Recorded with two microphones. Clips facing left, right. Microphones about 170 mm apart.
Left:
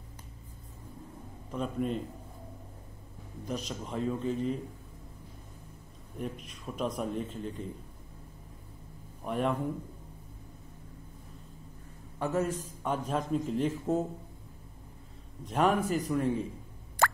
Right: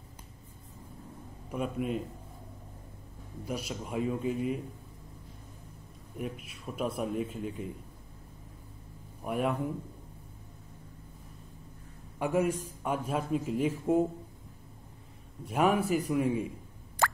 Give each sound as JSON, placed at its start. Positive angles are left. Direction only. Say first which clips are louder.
{"t": 1.5, "sound": "a man's voice", "louder": "even", "side_deg": -10}
{"t": 3.4, "sound": "a man's voice", "louder": "even", "side_deg": -10}
{"t": 6.1, "sound": "a man's voice", "louder": "even", "side_deg": -5}
{"t": 9.2, "sound": "a man's voice", "louder": "even", "side_deg": -10}
{"t": 12.2, "sound": "a man's voice", "louder": "right 2 dB", "side_deg": -10}
{"t": 15.4, "sound": "a man's voice", "louder": "even", "side_deg": -10}
{"t": 17.0, "sound": "plop", "louder": "left 1 dB", "side_deg": 55}